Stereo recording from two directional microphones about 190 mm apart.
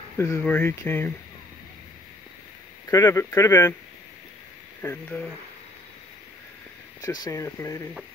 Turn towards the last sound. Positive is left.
turn(degrees=15)  # may be behind; listen again after turning